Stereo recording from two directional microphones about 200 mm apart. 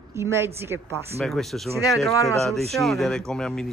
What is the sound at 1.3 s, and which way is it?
Speech, centre (ahead or behind).